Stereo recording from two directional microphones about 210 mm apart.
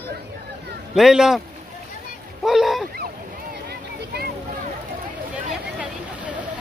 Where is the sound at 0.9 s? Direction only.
Centre (ahead or behind).